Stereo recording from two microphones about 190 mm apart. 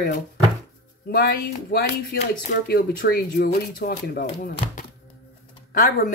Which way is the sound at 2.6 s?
55° left (ahead or behind).